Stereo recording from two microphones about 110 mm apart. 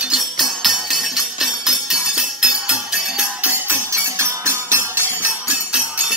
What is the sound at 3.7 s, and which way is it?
Music, 25° right (ahead or behind).